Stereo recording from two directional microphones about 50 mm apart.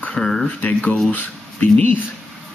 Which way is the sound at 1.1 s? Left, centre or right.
Left.